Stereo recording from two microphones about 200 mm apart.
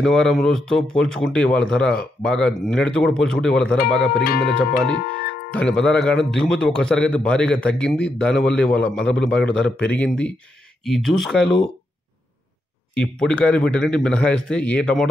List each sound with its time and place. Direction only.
0.0 s speech: centre (ahead or behind)
4.2 s speech: 50° left (ahead or behind)
4.6 s speech: 5° left (ahead or behind)
12.9 s speech: 5° left (ahead or behind)